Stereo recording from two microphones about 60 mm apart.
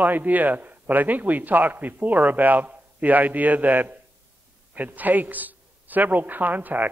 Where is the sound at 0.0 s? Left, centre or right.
Right.